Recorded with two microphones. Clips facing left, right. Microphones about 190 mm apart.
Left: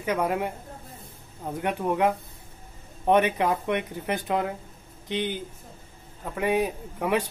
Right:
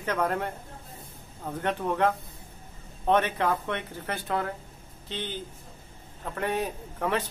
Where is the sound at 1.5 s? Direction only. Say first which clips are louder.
Left 2 dB; 10° left (ahead or behind).